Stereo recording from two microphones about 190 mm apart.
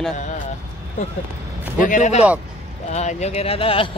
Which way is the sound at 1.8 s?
40° left (ahead or behind).